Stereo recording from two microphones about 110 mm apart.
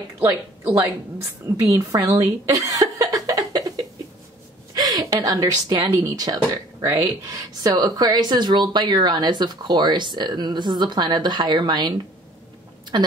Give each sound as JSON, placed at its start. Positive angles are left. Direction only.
{"t": 0.2, "sound": "speech", "side_deg": -25}
{"t": 1.6, "sound": "a sound", "side_deg": -30}
{"t": 4.7, "sound": "a woman's voice", "side_deg": -35}